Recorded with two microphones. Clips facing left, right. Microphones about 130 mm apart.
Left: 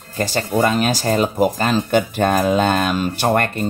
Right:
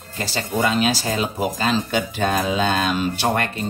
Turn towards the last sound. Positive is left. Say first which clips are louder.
# left 4 dB
turn(degrees=50)  # may be behind; listen again after turning